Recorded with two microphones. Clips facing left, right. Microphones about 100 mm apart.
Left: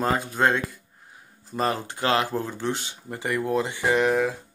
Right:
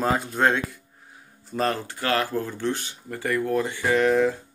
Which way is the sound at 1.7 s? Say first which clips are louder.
Left 1 dB; 25° left (ahead or behind).